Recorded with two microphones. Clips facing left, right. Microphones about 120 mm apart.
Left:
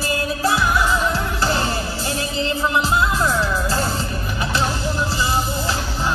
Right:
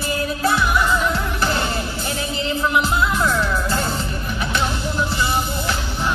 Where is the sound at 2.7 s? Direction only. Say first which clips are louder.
Even; 35° left (ahead or behind).